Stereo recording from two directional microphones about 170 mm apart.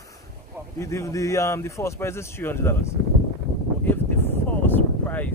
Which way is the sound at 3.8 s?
10° left (ahead or behind).